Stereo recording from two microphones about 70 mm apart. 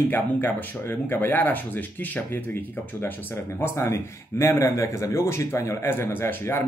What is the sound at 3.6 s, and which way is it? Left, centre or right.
A man's voice, left.